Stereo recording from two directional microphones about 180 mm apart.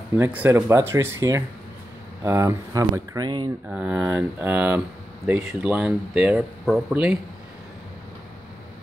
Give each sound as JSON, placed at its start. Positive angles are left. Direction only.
{"t": 0.2, "sound": "speech", "side_deg": -10}
{"t": 3.6, "sound": "speech", "side_deg": -10}